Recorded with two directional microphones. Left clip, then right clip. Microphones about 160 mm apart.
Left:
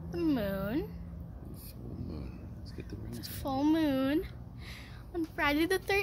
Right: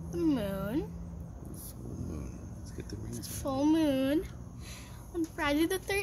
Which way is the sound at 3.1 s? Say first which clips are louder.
Even; centre (ahead or behind).